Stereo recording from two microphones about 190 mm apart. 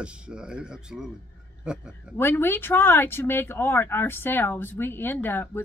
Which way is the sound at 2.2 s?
10° left (ahead or behind).